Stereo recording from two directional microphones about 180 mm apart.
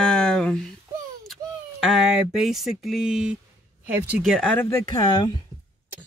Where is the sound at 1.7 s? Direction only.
Centre (ahead or behind).